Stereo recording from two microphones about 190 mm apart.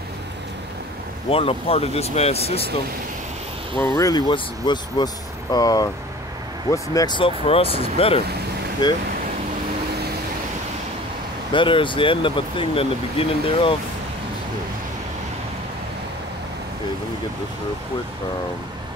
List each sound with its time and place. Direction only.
1.3 s speech: 30° left (ahead or behind)
3.8 s speech: 15° left (ahead or behind)
11.5 s speech: 25° left (ahead or behind)